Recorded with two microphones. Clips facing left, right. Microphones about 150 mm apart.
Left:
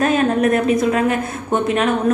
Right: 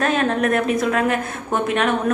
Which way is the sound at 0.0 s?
5° left (ahead or behind).